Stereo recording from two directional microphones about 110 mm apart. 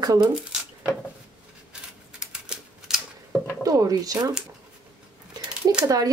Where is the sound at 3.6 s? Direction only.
35° right (ahead or behind).